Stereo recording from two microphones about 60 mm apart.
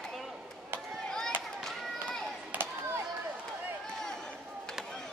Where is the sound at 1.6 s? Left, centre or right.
Centre.